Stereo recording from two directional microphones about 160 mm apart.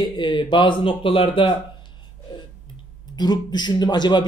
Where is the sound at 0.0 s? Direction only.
30° left (ahead or behind).